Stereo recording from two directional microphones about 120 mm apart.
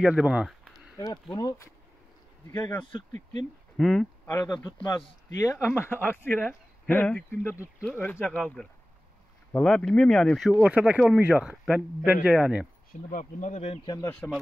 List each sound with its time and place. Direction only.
0.0 s speech: 10° right (ahead or behind)
0.9 s speech: 30° left (ahead or behind)
3.7 s speech: centre (ahead or behind)
4.3 s speech: 25° left (ahead or behind); by 10.5 s 5° left (ahead or behind)
10.6 s speech: 10° right (ahead or behind)
13.1 s speech: 90° left
14.2 s speech: 15° left (ahead or behind)